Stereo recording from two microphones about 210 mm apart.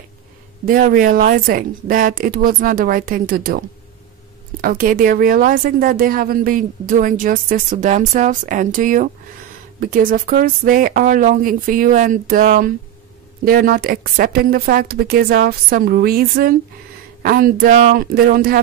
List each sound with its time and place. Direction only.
0.7 s a woman's voice: 40° right (ahead or behind)